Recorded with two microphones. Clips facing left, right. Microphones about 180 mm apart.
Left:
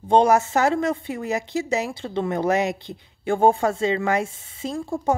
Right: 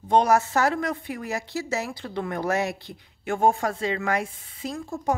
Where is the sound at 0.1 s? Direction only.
25° left (ahead or behind).